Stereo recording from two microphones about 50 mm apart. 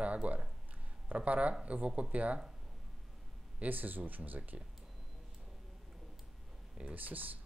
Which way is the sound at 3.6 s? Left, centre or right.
Right.